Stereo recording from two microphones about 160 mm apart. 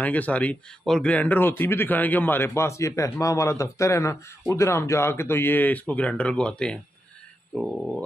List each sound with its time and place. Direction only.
0.0 s speech: 10° left (ahead or behind)